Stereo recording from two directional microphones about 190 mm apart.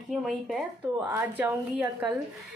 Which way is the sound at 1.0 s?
10° right (ahead or behind).